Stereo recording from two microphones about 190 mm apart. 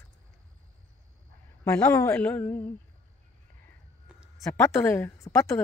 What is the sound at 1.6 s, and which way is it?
A woman's voice, 15° left (ahead or behind).